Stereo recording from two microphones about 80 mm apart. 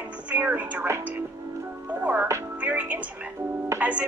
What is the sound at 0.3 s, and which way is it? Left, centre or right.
Speech, centre.